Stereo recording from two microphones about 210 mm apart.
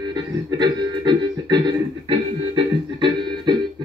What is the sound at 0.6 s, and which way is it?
Music, 20° right (ahead or behind).